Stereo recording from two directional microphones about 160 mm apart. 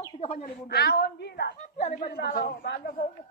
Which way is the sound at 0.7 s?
90° left.